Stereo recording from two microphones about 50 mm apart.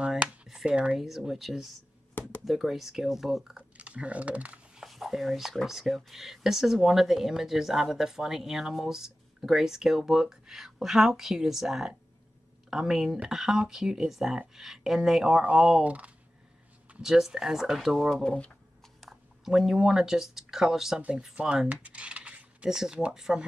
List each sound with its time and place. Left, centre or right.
0.2 s a sound: centre
0.9 s speech: centre
3.7 s speech: right
4.8 s a sound: centre
5.7 s speech: centre
15.4 s speech: right
17.0 s speech: centre
18.2 s speech: centre
18.9 s speech: centre
21.6 s typing: right
22.7 s speech: centre